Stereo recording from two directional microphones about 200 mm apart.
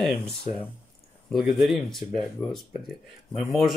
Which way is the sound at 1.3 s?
Centre (ahead or behind).